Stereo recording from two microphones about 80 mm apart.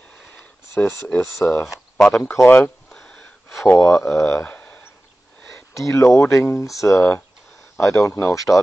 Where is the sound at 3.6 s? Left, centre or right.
Left.